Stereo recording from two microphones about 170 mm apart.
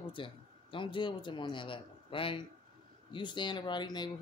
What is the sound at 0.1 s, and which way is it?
A man's voice, 30° left (ahead or behind).